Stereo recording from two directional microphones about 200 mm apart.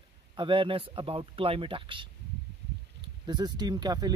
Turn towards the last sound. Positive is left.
turn(degrees=-20)  # may be behind; listen again after turning